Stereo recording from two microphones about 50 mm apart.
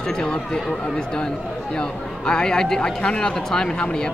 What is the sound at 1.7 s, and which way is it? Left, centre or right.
Speech, centre.